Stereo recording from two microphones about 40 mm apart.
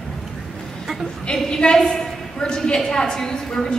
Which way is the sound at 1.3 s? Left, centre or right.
Left.